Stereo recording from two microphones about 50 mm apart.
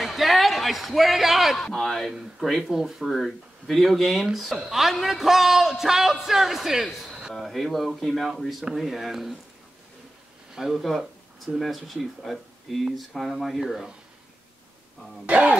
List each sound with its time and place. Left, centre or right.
0.0 s speech: centre
10.5 s speech: centre
15.2 s speech: right